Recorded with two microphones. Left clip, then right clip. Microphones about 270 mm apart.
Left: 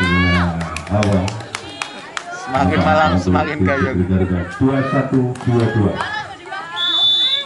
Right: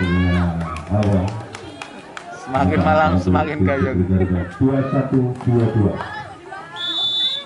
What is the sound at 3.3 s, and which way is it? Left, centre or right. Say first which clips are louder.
A man's voice: left 2 dB; centre.